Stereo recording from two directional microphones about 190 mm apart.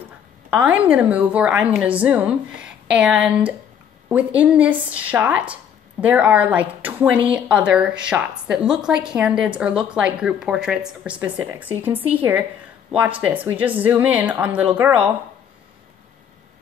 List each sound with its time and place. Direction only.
0.5 s a woman's voice: 5° right (ahead or behind)